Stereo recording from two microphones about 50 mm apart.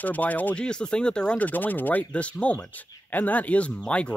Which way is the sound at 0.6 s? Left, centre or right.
Centre.